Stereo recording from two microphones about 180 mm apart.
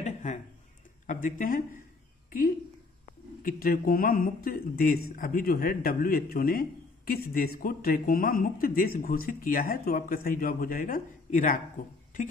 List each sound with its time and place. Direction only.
0.0 s a sound: 40° left (ahead or behind)
1.0 s speech: 50° left (ahead or behind)
3.4 s speech: 55° left (ahead or behind)